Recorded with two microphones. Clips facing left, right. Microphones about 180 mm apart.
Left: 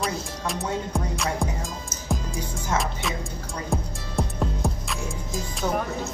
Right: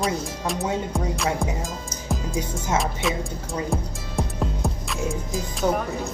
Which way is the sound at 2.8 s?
Centre (ahead or behind).